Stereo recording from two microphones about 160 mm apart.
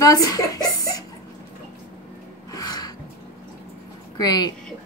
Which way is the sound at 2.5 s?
25° left (ahead or behind).